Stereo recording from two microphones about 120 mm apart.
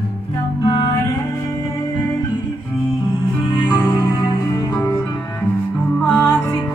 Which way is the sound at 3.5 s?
35° left (ahead or behind).